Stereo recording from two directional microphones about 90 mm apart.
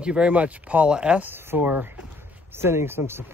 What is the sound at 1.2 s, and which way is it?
Speech, 25° right (ahead or behind).